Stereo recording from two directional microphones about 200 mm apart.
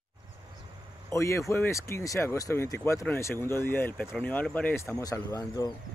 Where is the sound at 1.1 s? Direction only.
15° left (ahead or behind).